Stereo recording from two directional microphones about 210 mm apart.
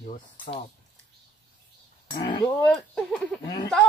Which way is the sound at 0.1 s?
30° left (ahead or behind).